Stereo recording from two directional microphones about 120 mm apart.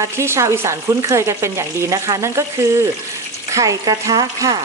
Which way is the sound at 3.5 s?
30° right (ahead or behind).